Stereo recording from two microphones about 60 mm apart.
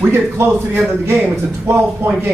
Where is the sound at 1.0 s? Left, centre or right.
Right.